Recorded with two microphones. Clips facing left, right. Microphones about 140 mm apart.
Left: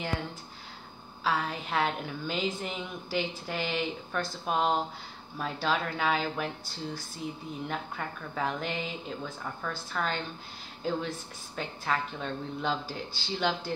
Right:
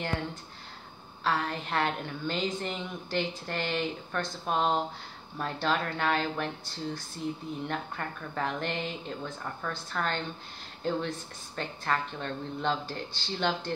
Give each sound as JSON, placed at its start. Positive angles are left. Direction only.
{"t": 1.2, "sound": "speech", "side_deg": 5}